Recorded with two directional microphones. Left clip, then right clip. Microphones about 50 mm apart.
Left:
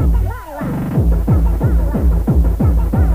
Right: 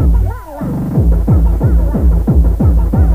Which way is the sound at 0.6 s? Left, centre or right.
Centre.